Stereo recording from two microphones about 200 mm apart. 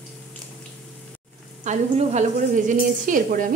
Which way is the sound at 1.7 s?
35° right (ahead or behind).